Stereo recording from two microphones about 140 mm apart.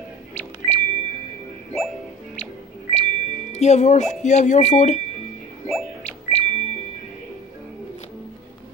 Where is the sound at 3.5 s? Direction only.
55° left (ahead or behind).